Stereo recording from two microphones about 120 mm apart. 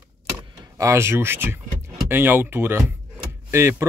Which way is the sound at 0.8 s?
20° right (ahead or behind).